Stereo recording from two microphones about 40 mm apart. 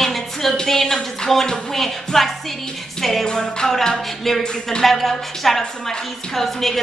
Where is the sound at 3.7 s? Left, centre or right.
Centre.